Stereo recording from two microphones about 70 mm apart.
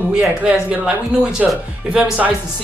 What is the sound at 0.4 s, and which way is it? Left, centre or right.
Speech, centre.